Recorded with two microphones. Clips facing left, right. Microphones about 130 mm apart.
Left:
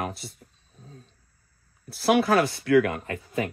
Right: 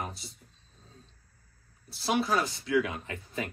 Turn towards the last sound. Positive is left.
turn(degrees=55)  # may be behind; listen again after turning